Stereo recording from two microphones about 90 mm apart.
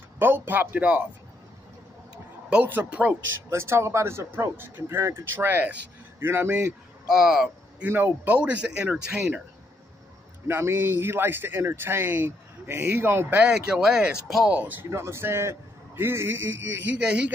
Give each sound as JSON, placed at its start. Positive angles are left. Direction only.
{"t": 0.2, "sound": "speech", "side_deg": -20}
{"t": 2.5, "sound": "speech", "side_deg": -20}
{"t": 3.3, "sound": "speech", "side_deg": -30}
{"t": 7.1, "sound": "speech", "side_deg": -5}
{"t": 7.8, "sound": "speech", "side_deg": -20}
{"t": 10.4, "sound": "speech", "side_deg": -25}
{"t": 13.4, "sound": "speech", "side_deg": -10}
{"t": 14.5, "sound": "speech", "side_deg": -20}
{"t": 14.9, "sound": "speech", "side_deg": -30}
{"t": 17.0, "sound": "speech", "side_deg": -15}